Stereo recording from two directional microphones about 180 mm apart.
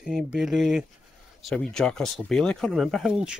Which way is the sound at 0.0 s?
5° right (ahead or behind).